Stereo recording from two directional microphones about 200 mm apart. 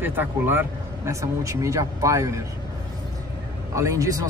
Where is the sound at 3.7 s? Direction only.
15° right (ahead or behind).